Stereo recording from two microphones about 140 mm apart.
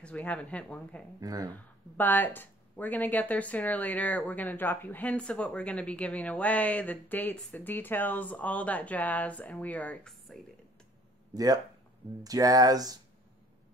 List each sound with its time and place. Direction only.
0.0 s speech: 10° left (ahead or behind)
1.2 s speech: 25° right (ahead or behind)
2.0 s speech: 15° left (ahead or behind)
11.3 s speech: 25° right (ahead or behind)